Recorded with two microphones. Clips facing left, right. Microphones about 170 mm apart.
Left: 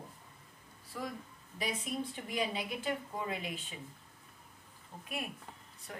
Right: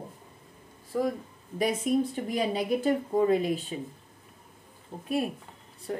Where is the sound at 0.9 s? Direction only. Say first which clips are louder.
Right 13 dB; 45° right (ahead or behind).